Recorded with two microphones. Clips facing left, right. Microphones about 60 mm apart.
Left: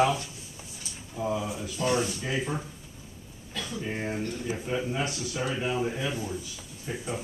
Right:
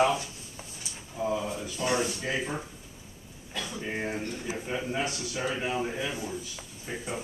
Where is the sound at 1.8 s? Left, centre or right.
Centre.